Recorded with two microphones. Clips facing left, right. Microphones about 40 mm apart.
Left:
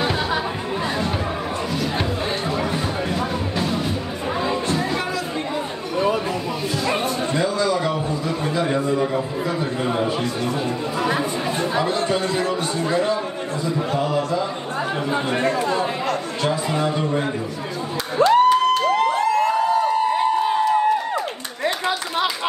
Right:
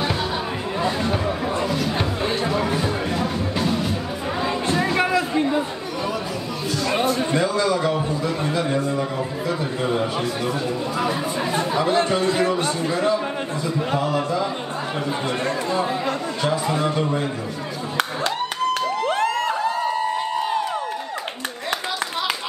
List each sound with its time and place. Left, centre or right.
1.7 s music: centre
4.6 s music: right
7.3 s a sound: right
12.3 s chatter: right
16.6 s speech: centre
18.2 s crowd: right